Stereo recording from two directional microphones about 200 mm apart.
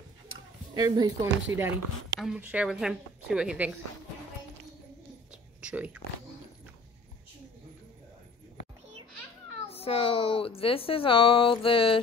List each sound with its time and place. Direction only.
0.7 s speech: 20° right (ahead or behind)
2.1 s speech: 5° right (ahead or behind)
5.3 s a sound: 5° right (ahead or behind)
9.7 s a woman's voice: 30° left (ahead or behind)